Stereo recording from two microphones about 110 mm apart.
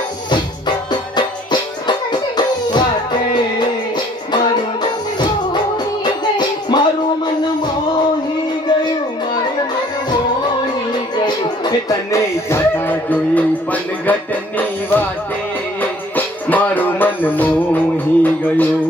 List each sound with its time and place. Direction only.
0.3 s music: 40° left (ahead or behind)
6.0 s music: 40° left (ahead or behind)
11.2 s music: 40° left (ahead or behind)
12.4 s music: 20° left (ahead or behind)